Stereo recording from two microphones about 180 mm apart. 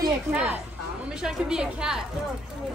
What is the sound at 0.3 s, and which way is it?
A woman's voice, 5° right (ahead or behind).